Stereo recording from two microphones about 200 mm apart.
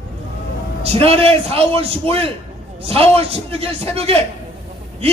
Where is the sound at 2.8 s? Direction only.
30° right (ahead or behind).